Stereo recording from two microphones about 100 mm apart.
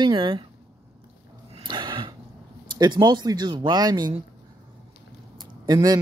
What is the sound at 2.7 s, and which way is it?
Speech, 45° right (ahead or behind).